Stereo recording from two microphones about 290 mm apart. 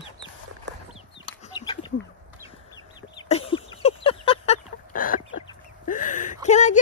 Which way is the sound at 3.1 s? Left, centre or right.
Centre.